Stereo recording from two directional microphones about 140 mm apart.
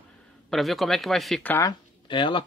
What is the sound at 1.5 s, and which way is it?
Speech, 20° left (ahead or behind).